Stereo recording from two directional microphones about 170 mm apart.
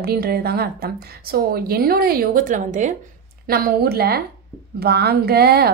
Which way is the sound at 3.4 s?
60° right (ahead or behind).